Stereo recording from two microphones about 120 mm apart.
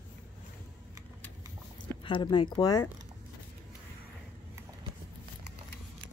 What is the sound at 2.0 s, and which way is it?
Speech, 40° left (ahead or behind).